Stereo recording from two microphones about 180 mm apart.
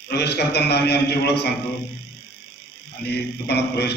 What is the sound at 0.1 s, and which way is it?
A man's voice, 65° left (ahead or behind).